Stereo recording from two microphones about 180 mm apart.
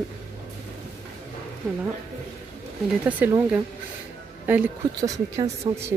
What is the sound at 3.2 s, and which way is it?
Speech, 10° right (ahead or behind).